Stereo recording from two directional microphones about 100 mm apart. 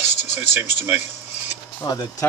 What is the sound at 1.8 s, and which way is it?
Speech, 50° left (ahead or behind).